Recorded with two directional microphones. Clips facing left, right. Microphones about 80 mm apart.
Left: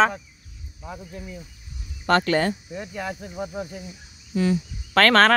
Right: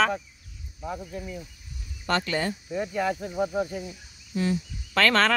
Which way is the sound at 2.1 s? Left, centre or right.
Left.